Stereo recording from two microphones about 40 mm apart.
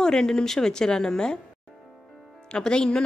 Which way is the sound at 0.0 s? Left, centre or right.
Centre.